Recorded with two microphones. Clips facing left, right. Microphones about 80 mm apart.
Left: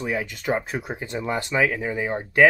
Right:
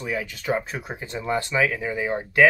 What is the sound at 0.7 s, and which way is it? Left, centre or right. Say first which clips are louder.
Speech: left 3 dB; centre.